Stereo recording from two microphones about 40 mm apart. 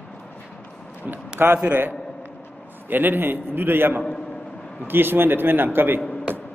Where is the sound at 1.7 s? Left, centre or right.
Right.